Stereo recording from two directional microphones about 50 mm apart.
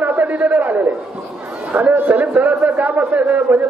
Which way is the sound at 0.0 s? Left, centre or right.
Right.